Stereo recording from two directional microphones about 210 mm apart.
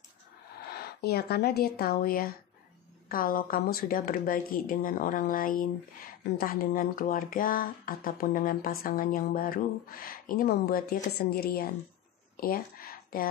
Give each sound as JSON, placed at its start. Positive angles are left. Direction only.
{"t": 0.7, "sound": "speech", "side_deg": 50}